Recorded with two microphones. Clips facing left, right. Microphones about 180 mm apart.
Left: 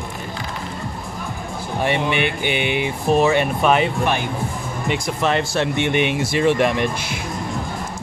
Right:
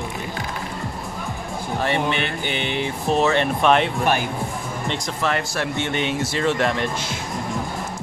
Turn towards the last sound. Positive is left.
turn(degrees=15)  # may be behind; listen again after turning